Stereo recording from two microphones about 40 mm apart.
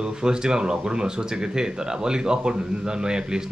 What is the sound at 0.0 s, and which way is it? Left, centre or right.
Speech, centre.